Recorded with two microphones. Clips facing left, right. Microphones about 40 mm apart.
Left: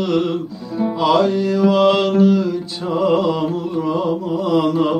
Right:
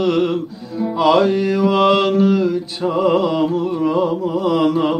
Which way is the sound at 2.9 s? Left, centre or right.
Right.